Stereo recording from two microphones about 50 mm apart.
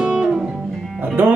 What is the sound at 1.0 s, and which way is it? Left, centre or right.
Music, right.